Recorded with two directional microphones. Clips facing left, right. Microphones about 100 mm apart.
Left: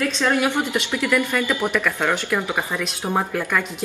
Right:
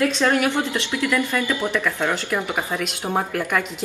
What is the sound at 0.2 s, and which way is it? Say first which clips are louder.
Speech: right 1 dB; 15° left (ahead or behind).